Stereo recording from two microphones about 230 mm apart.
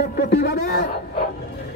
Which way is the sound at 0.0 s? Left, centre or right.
Left.